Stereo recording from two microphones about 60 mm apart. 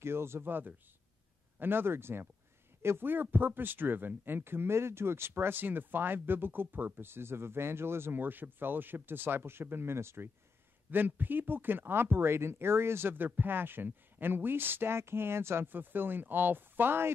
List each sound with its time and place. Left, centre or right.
0.0 s speech: right
10.9 s speech: right